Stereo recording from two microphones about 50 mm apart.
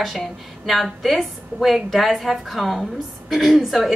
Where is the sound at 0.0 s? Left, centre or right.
Centre.